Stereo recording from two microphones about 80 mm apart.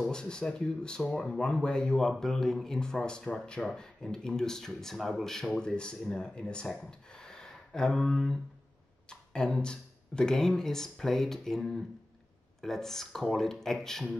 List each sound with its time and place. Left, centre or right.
0.1 s speech: centre
6.8 s a sound: centre
9.1 s speech: centre